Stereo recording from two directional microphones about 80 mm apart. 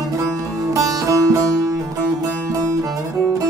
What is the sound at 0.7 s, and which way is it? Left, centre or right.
Music, right.